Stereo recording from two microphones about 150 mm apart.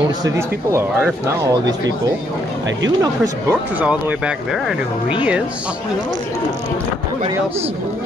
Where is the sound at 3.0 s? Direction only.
25° right (ahead or behind).